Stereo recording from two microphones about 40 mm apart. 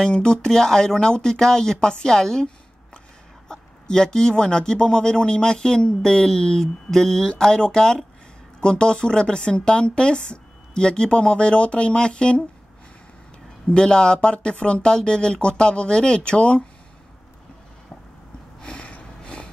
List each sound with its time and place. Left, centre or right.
0.0 s a woman's voice: left
13.7 s a woman's voice: centre
18.6 s a sound: left